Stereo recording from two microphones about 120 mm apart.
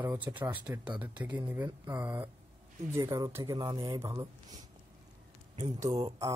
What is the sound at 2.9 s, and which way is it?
Speech, 30° right (ahead or behind).